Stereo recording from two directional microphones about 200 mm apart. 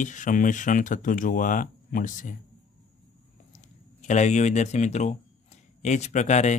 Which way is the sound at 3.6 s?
35° left (ahead or behind).